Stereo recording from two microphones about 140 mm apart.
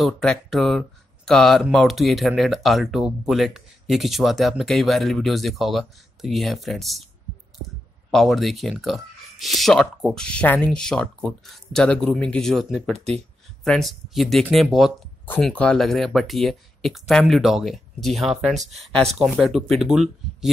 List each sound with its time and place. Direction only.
0.0 s speech: centre (ahead or behind)
8.1 s speech: centre (ahead or behind)
12.9 s speech: 50° right (ahead or behind)
13.7 s speech: centre (ahead or behind)